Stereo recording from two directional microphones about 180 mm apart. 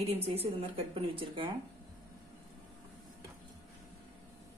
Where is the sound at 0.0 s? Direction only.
35° right (ahead or behind).